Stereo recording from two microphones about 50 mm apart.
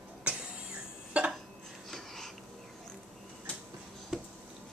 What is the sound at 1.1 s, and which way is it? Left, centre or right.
Dishes, right.